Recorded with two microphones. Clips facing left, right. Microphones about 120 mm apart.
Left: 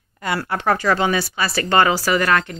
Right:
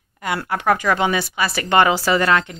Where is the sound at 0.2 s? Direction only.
15° right (ahead or behind).